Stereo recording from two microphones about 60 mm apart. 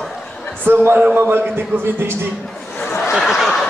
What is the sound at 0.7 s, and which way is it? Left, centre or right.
Speech, right.